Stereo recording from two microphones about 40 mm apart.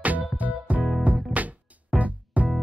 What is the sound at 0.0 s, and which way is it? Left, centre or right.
Music, right.